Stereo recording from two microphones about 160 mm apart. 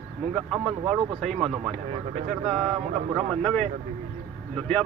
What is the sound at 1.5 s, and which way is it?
Speech, 45° right (ahead or behind).